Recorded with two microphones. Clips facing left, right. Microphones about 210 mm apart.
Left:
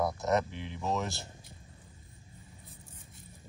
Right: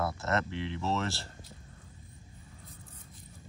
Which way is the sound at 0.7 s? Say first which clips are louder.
Left 1 dB; 15° left (ahead or behind).